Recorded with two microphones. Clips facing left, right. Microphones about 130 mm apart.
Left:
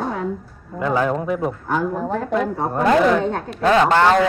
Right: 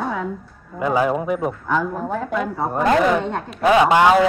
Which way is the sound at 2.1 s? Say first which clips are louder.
Left 2 dB; 40° left (ahead or behind).